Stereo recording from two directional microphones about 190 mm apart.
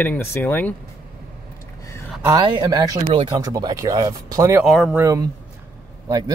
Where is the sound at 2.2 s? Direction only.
20° right (ahead or behind).